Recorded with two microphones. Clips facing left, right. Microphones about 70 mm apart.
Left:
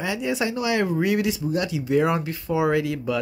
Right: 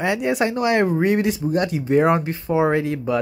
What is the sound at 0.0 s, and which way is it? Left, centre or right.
Speech, right.